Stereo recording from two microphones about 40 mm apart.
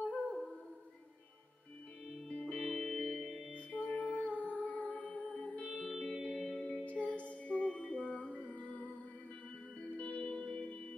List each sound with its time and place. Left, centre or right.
0.0 s music: left
2.0 s music: centre
3.5 s music: left
5.9 s music: centre
6.8 s music: left